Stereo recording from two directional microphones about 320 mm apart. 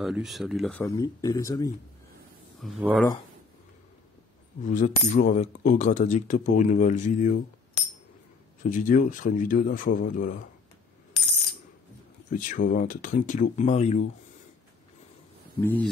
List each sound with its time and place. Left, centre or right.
0.0 s speech: centre
2.6 s speech: centre
4.6 s speech: left
12.3 s speech: left
15.6 s speech: centre